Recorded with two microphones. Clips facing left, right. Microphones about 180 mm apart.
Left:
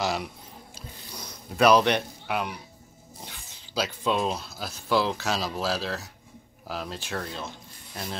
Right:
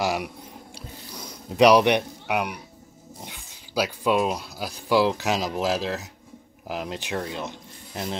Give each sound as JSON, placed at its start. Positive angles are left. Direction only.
{"t": 0.0, "sound": "speech", "side_deg": -15}
{"t": 1.6, "sound": "speech", "side_deg": -15}